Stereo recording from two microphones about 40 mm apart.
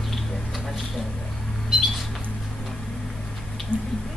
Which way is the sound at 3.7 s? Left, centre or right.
Left.